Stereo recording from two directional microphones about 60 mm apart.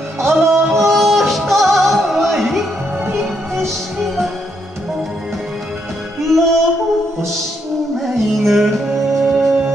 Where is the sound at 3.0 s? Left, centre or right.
Right.